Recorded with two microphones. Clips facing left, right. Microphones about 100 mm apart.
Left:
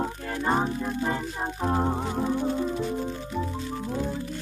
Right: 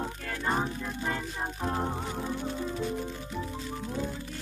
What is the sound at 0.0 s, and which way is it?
Music, 25° left (ahead or behind).